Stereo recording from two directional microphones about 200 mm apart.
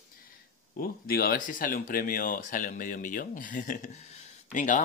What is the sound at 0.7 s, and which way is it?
Speech, 50° left (ahead or behind).